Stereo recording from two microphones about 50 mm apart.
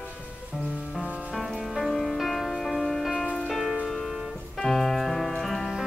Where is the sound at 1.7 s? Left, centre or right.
Centre.